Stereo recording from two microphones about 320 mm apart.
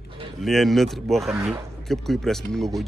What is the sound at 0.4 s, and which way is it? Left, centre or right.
A man's voice, centre.